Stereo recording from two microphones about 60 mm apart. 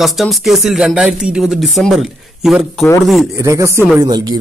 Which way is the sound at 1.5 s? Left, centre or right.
Centre.